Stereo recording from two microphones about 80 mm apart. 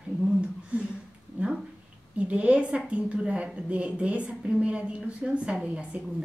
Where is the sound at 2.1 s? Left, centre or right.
Centre.